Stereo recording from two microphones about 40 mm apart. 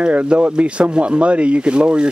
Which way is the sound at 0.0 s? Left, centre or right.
Right.